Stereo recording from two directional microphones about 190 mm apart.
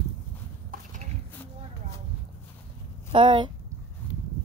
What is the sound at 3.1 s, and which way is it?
Speech, 25° right (ahead or behind).